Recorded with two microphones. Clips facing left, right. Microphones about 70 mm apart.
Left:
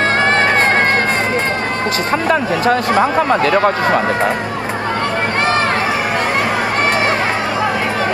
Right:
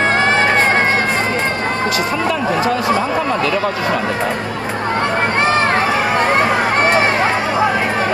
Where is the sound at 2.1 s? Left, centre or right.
Left.